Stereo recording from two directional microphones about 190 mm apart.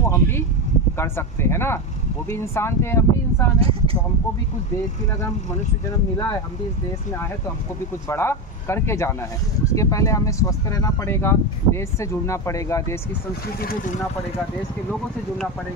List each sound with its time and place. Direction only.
0.0 s a sound: 15° left (ahead or behind)
0.9 s speech: 15° left (ahead or behind)
3.5 s speech: 30° right (ahead or behind)
8.1 s speech: 10° left (ahead or behind)